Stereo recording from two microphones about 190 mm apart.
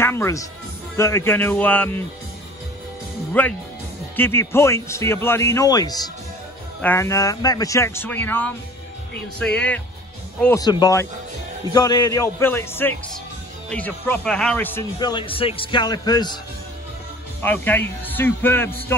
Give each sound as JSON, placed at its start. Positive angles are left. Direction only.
{"t": 0.0, "sound": "speech", "side_deg": 15}
{"t": 3.4, "sound": "speech", "side_deg": 10}
{"t": 10.4, "sound": "speech", "side_deg": 15}
{"t": 15.0, "sound": "a man's voice", "side_deg": 25}
{"t": 17.4, "sound": "speech", "side_deg": 10}